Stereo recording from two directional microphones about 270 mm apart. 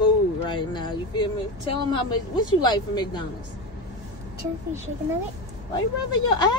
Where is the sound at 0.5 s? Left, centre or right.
Centre.